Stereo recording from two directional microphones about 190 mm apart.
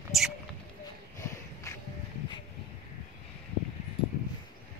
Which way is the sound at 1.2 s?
15° left (ahead or behind).